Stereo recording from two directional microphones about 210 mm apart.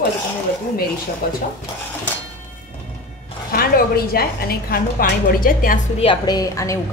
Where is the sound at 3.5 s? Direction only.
45° left (ahead or behind).